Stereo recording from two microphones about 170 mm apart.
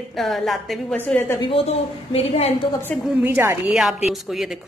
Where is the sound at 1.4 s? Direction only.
35° left (ahead or behind).